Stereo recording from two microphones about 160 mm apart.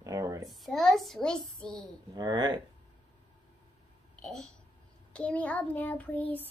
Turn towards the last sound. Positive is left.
turn(degrees=10)  # may be behind; listen again after turning